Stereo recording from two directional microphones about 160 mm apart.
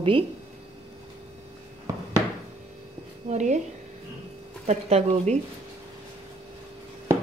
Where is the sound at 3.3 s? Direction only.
45° right (ahead or behind).